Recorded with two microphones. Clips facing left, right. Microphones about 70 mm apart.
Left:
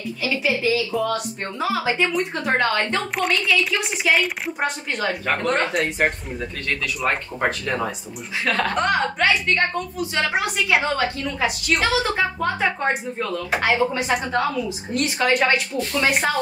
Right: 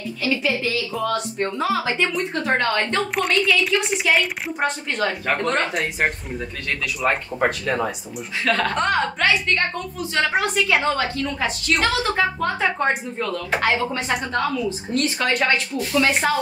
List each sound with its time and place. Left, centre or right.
0.2 s speech: centre